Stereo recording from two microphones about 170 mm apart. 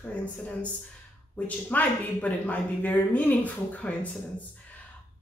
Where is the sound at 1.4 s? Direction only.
10° left (ahead or behind).